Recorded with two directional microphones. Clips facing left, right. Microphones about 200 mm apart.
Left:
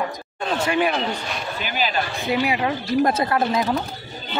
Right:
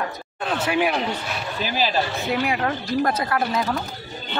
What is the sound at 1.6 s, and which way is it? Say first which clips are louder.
Speech: right 2 dB; 35° right (ahead or behind).